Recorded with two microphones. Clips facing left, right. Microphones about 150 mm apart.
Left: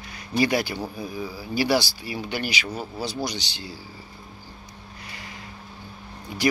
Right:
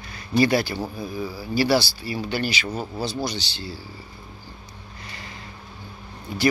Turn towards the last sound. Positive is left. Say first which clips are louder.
# right 3 dB
turn(degrees=15)  # may be behind; listen again after turning